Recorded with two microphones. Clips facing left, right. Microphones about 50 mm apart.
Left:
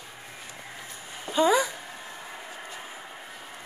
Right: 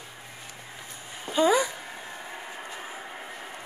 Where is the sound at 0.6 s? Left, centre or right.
Centre.